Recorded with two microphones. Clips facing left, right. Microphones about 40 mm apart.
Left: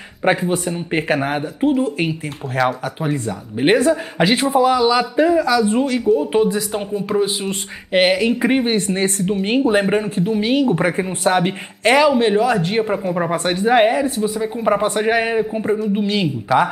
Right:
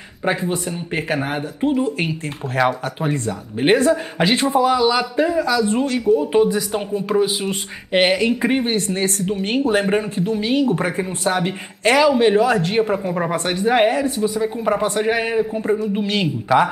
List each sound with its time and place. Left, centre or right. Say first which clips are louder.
0.2 s speech: left 4 dB; left
1.1 s speech: left 2 dB; centre
1.6 s speech: left 2 dB; centre
8.6 s speech: left 2 dB; left
9.3 s speech: left 3 dB; centre
9.8 s speech: left 1 dB; centre
10.3 s speech: left 1 dB; left
12.0 s speech: right 2 dB; centre
13.4 s speech: left 2 dB; centre
15.6 s speech: left 1 dB; centre